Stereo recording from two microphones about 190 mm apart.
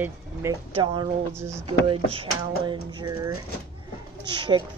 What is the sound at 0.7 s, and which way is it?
Speech, 25° right (ahead or behind).